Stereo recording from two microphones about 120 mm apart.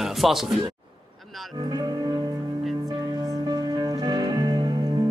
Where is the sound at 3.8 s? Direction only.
35° right (ahead or behind).